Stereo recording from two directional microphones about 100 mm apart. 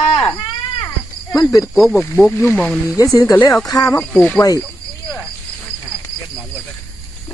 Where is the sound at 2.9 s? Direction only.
35° left (ahead or behind).